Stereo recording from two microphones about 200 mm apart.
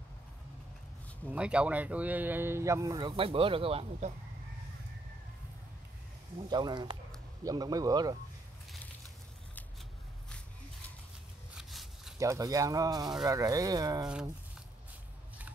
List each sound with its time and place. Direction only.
1.2 s speech: 5° right (ahead or behind); by 4.1 s 30° right (ahead or behind)
6.5 s speech: 20° right (ahead or behind)
11.5 s a sound: centre (ahead or behind)
12.2 s speech: 15° right (ahead or behind)